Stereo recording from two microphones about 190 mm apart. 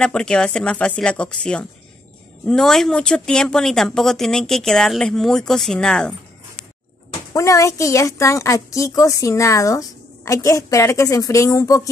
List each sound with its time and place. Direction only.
0.0 s speech: 5° left (ahead or behind)
7.3 s a woman's voice: 15° left (ahead or behind)